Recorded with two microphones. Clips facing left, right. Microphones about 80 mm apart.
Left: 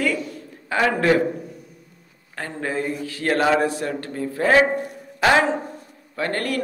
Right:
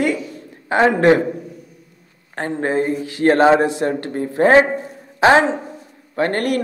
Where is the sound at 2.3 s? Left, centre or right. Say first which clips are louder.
Right 7 dB; right.